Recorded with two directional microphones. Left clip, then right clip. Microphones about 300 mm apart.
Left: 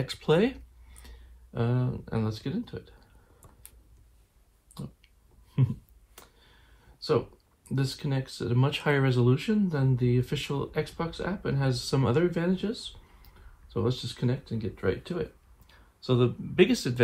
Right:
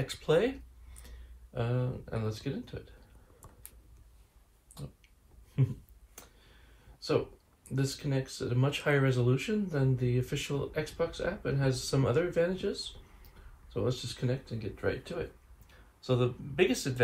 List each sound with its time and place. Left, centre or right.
0.0 s speech: centre
5.6 s speech: centre
7.7 s speech: centre
13.7 s speech: centre